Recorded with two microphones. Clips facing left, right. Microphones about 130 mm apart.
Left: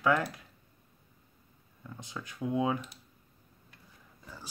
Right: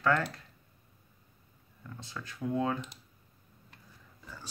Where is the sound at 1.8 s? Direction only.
15° left (ahead or behind).